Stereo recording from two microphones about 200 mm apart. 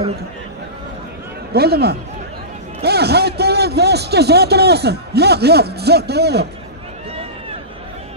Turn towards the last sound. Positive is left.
turn(degrees=-55)  # may be behind; listen again after turning